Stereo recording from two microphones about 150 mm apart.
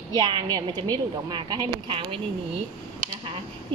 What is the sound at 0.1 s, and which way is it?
A woman's voice, 30° right (ahead or behind).